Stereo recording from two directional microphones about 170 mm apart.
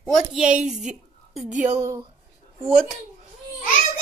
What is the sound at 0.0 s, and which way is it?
A woman's voice, 5° right (ahead or behind).